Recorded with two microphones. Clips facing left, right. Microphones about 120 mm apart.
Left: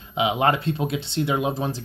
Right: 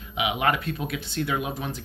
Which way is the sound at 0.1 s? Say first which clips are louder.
Left 4 dB; 30° left (ahead or behind).